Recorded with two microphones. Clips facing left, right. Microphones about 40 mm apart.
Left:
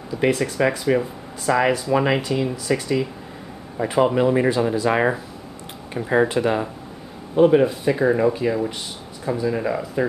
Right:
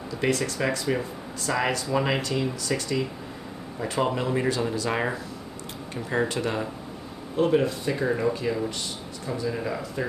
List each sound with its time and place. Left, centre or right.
0.2 s speech: centre